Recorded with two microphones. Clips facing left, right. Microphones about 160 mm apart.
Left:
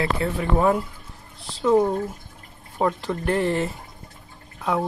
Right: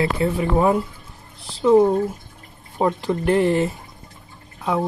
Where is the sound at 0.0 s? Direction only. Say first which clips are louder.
Right 4 dB; 15° right (ahead or behind).